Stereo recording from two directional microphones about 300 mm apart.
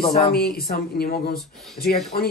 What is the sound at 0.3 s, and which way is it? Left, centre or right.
Speech, left.